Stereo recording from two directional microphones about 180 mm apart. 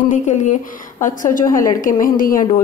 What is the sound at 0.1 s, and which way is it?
Speech, 40° left (ahead or behind).